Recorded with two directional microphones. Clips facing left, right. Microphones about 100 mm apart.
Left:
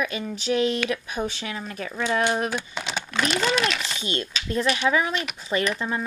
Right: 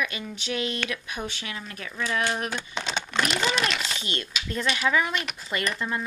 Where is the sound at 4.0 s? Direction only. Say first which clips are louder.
Left 4 dB; 30° left (ahead or behind).